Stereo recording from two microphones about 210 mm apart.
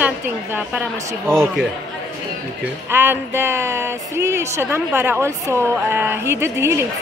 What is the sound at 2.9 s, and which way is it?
Speech, 10° right (ahead or behind).